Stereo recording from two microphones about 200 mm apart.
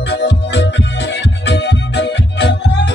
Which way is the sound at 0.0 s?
60° left (ahead or behind).